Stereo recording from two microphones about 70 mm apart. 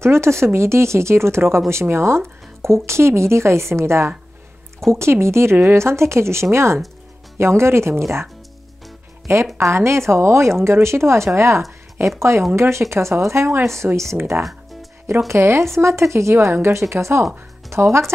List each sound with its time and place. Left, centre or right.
0.0 s speech: right
9.6 s speech: right
15.2 s speech: right